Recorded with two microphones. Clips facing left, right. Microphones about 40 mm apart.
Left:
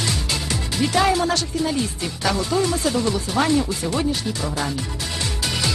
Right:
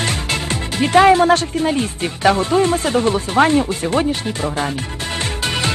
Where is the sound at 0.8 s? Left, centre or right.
Right.